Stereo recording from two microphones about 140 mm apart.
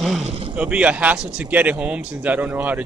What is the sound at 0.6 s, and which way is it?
A man's voice, 10° right (ahead or behind).